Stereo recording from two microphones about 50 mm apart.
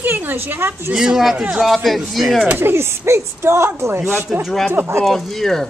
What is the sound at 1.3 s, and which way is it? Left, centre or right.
Speech, right.